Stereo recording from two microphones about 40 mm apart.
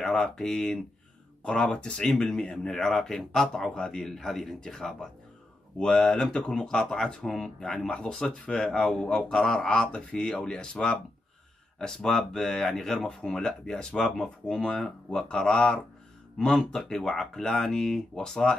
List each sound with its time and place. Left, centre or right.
0.0 s speech: centre